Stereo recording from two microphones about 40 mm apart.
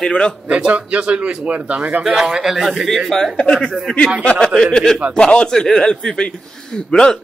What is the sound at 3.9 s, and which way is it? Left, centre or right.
Speech, centre.